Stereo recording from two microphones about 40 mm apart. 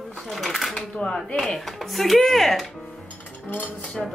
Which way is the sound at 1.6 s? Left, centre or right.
Centre.